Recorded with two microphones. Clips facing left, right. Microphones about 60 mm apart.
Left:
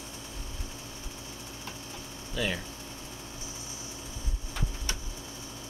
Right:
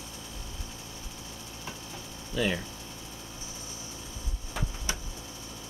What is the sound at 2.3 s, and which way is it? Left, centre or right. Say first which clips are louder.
Speech: right 3 dB; centre.